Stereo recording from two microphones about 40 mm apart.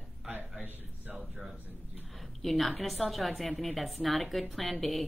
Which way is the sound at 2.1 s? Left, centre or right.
Centre.